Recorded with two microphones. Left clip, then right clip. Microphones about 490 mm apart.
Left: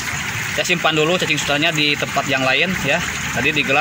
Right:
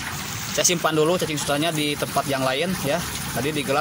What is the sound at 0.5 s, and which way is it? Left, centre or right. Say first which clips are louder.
Speech: left 3 dB; right.